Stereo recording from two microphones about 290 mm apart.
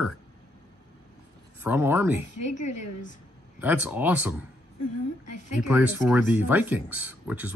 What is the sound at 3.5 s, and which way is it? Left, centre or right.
Speech, centre.